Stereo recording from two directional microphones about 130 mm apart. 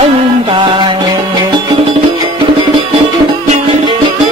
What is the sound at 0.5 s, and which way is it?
Music, 40° right (ahead or behind).